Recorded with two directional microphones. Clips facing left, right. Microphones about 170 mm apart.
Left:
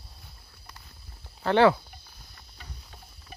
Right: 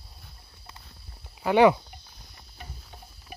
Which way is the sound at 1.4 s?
15° right (ahead or behind).